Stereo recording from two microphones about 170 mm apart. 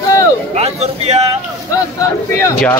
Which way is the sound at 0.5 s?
40° right (ahead or behind).